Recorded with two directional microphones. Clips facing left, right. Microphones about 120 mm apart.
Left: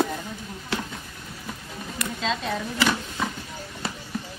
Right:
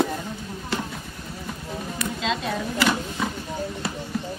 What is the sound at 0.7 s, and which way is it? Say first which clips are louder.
Clip-clop: right 1 dB; centre (ahead or behind).